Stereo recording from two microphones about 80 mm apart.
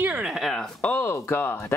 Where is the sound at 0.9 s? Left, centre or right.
Left.